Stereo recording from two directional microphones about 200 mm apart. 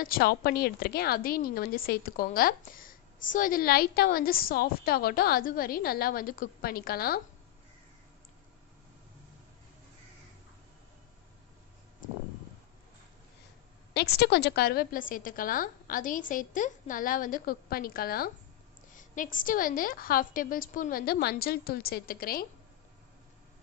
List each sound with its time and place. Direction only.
0.0 s a woman's voice: 45° left (ahead or behind)
13.9 s a woman's voice: 55° left (ahead or behind)